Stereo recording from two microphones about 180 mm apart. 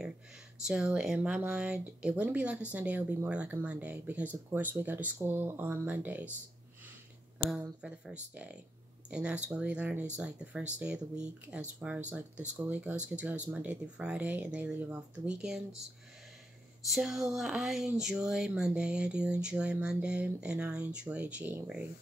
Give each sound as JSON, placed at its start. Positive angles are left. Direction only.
{"t": 0.7, "sound": "speech", "side_deg": -5}
{"t": 7.5, "sound": "speech", "side_deg": -5}
{"t": 16.9, "sound": "speech", "side_deg": 0}